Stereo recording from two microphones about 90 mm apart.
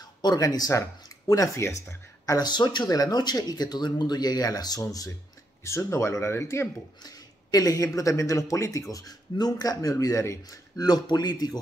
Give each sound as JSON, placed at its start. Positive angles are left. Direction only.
{"t": 0.0, "sound": "speech", "side_deg": 50}
{"t": 2.3, "sound": "speech", "side_deg": 55}
{"t": 7.0, "sound": "speech", "side_deg": 45}
{"t": 10.8, "sound": "speech", "side_deg": 50}